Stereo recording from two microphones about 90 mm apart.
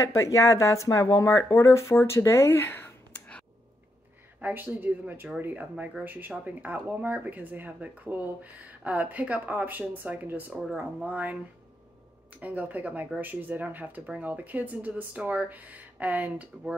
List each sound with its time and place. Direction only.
0.0 s speech: 35° left (ahead or behind)
4.4 s speech: 20° right (ahead or behind)